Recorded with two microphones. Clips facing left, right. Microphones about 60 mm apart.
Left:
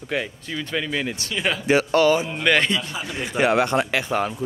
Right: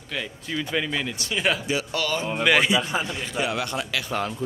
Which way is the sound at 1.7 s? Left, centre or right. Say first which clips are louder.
Left 8 dB; left.